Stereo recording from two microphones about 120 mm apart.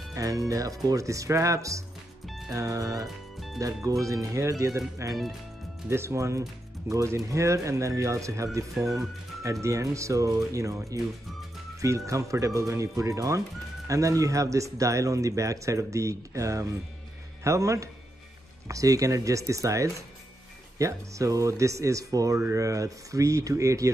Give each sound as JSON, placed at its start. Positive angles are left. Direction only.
{"t": 0.1, "sound": "speech", "side_deg": -30}
{"t": 2.2, "sound": "music", "side_deg": 0}
{"t": 2.5, "sound": "speech", "side_deg": -30}
{"t": 12.1, "sound": "speech", "side_deg": -25}